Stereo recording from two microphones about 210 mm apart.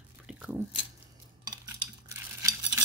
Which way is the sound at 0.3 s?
5° right (ahead or behind).